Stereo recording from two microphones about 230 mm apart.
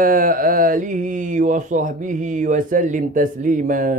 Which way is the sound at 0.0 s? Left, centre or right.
Right.